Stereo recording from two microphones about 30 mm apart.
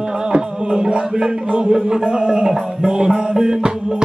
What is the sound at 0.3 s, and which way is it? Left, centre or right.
Music, right.